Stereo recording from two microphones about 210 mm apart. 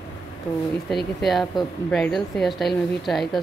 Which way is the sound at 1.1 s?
Centre (ahead or behind).